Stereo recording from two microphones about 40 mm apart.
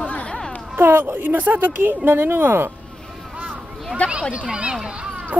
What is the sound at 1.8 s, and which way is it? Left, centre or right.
Speech, right.